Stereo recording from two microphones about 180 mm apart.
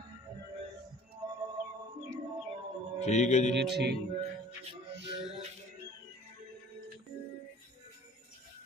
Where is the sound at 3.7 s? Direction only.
70° right (ahead or behind).